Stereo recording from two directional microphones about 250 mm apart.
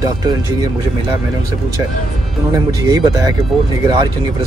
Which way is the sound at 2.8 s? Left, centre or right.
Centre.